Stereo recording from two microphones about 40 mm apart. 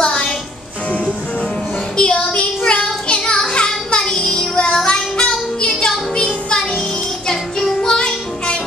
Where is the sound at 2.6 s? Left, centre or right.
Left.